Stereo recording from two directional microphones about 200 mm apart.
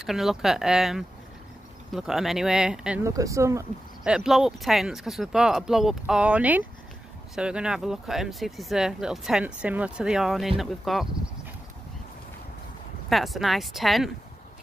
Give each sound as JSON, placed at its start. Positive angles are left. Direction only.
{"t": 0.0, "sound": "speech", "side_deg": 0}
{"t": 3.0, "sound": "speech", "side_deg": -15}
{"t": 4.1, "sound": "speech", "side_deg": 0}
{"t": 13.1, "sound": "speech", "side_deg": 0}